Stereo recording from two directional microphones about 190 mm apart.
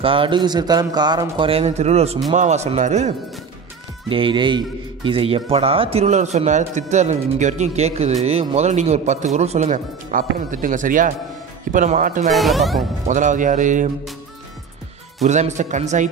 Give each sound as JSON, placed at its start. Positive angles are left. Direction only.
{"t": 0.0, "sound": "a man's voice", "side_deg": -25}
{"t": 4.1, "sound": "a man's voice", "side_deg": -25}
{"t": 12.3, "sound": "speech", "side_deg": 0}
{"t": 13.1, "sound": "a man's voice", "side_deg": -40}
{"t": 15.2, "sound": "a man's voice", "side_deg": -40}